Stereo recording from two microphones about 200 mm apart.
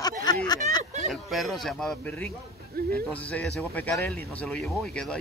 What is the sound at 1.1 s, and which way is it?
Speech, centre (ahead or behind).